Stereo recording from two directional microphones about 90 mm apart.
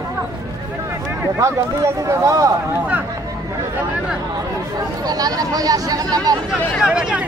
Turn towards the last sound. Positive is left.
turn(degrees=-10)  # may be behind; listen again after turning